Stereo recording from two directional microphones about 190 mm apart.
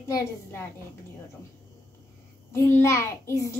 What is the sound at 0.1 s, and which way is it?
Speech, 15° left (ahead or behind).